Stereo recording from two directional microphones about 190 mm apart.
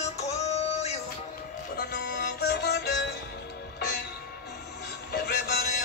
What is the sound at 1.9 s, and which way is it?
Music, 65° left (ahead or behind).